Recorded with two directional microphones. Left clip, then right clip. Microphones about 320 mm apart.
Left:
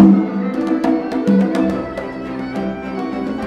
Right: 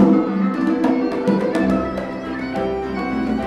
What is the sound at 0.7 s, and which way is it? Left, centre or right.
Music, left.